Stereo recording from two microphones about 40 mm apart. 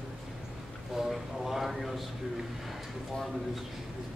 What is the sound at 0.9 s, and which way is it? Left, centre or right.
A man's voice, centre.